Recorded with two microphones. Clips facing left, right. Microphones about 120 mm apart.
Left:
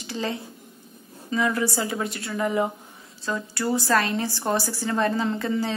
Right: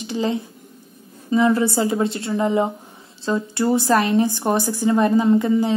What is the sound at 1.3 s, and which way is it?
A woman's voice, 25° right (ahead or behind).